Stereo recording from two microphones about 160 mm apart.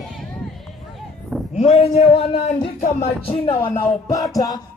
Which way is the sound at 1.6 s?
40° left (ahead or behind).